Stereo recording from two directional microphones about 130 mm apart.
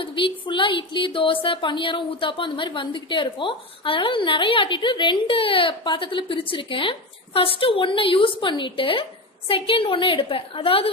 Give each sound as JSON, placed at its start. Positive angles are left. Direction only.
{"t": 0.0, "sound": "a woman's voice", "side_deg": 40}